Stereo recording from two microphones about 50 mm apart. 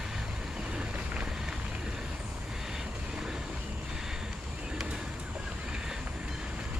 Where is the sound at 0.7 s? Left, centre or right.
Right.